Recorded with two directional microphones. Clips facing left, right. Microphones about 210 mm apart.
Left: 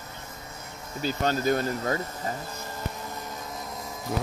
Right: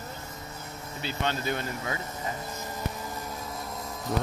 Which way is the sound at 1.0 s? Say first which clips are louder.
Left 5 dB; 40° left (ahead or behind).